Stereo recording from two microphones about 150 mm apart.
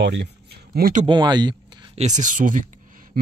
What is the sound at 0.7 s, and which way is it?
Speech, 75° right (ahead or behind).